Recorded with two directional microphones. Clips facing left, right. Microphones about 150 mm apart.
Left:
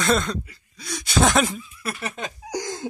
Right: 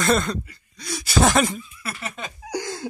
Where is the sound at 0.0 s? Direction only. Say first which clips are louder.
Right 1 dB; centre (ahead or behind).